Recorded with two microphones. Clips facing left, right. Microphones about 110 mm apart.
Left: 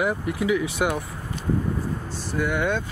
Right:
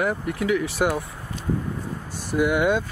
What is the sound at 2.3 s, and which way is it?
Speech, 10° right (ahead or behind).